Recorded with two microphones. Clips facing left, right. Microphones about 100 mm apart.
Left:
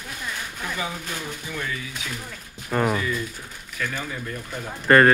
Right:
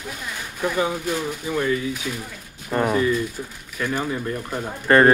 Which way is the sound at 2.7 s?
5° right (ahead or behind).